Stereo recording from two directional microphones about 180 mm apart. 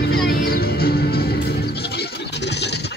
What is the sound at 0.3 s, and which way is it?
Music, 55° left (ahead or behind).